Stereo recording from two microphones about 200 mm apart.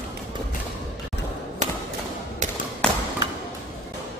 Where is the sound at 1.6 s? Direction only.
35° right (ahead or behind).